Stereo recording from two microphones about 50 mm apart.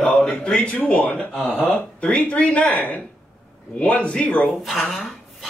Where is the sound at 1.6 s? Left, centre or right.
Left.